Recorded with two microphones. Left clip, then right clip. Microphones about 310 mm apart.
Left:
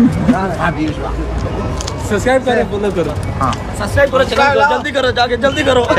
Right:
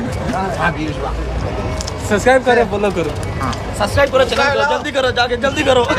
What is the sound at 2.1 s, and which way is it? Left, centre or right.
Speech, centre.